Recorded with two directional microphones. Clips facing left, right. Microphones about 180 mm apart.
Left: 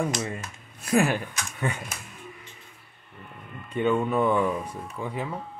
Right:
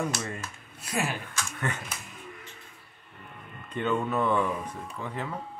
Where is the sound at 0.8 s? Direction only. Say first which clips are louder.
Left 9 dB; 55° left (ahead or behind).